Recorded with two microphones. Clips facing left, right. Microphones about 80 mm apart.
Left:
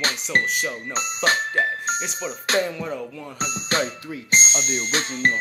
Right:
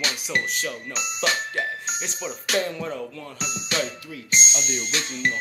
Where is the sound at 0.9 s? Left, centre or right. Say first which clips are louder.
Left 4 dB; left.